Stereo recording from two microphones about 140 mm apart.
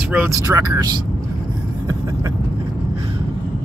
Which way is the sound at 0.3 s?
25° right (ahead or behind).